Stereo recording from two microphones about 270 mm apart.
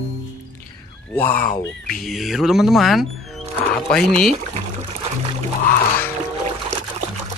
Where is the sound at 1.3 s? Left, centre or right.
Centre.